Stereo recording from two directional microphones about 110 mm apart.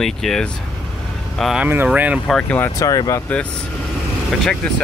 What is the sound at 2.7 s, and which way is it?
Speech, 35° left (ahead or behind).